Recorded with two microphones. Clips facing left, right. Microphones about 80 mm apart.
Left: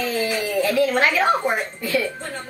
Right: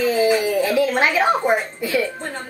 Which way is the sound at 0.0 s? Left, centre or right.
Centre.